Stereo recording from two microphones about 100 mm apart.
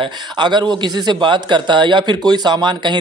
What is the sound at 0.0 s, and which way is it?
Speech, 50° right (ahead or behind).